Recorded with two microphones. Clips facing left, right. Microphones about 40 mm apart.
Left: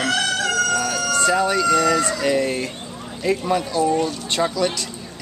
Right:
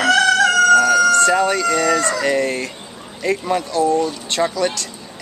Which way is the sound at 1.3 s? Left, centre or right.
Centre.